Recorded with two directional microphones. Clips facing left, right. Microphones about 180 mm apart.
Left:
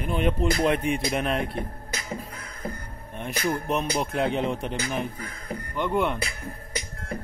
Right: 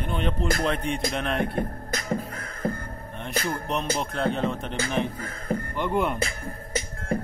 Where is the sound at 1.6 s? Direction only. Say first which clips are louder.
Right 4 dB; 45° right (ahead or behind).